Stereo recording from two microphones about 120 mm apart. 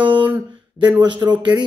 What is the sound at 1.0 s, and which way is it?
Speech, 35° right (ahead or behind).